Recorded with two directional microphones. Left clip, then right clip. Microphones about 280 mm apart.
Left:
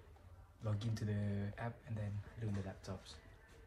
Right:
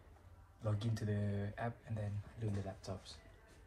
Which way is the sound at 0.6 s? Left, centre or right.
Centre.